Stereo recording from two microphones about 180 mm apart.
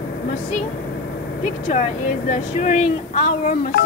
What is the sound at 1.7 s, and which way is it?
Speech, 45° left (ahead or behind).